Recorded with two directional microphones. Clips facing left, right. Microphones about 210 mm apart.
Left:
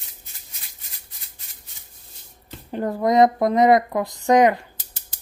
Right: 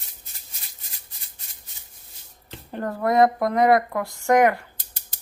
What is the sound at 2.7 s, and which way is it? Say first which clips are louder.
Speech: left 3 dB; 15° left (ahead or behind).